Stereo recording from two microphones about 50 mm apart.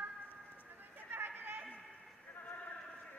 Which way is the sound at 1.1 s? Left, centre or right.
Right.